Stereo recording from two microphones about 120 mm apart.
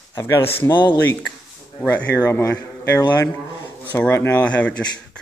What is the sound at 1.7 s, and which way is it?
Speech, 15° left (ahead or behind).